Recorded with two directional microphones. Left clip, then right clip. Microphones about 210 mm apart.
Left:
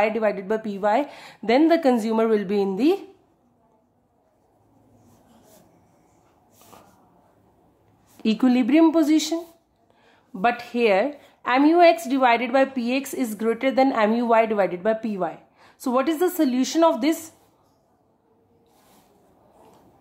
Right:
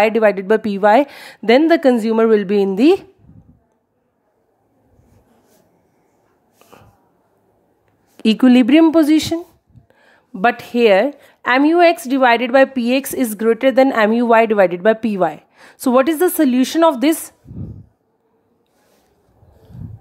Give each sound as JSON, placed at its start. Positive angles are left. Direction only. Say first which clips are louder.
{"t": 0.0, "sound": "a woman's voice", "louder": "right 8 dB", "side_deg": -35}
{"t": 8.2, "sound": "a woman's voice", "louder": "right 9 dB", "side_deg": -30}